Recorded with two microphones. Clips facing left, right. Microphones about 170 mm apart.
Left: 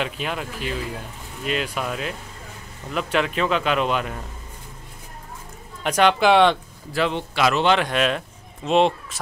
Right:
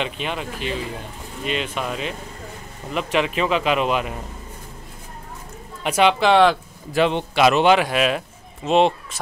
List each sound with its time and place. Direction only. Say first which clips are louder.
0.0 s speech: right 1 dB; centre (ahead or behind)
5.9 s speech: even; 5° right (ahead or behind)
6.9 s speech: right 4 dB; 20° right (ahead or behind)
7.7 s speech: right 2 dB; 5° right (ahead or behind)